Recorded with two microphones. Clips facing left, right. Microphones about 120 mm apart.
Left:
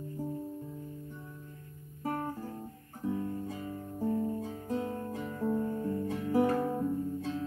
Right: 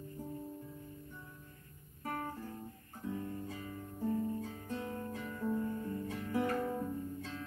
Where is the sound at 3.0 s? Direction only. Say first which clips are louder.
Left 6 dB; 30° left (ahead or behind).